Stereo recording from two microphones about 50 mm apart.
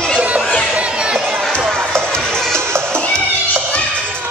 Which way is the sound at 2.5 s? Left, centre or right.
Right.